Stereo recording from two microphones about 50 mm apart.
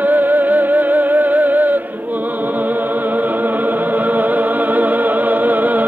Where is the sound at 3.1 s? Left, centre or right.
Right.